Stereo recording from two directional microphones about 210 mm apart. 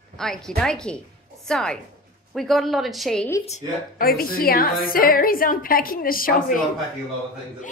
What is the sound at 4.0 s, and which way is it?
A woman's voice, 45° left (ahead or behind).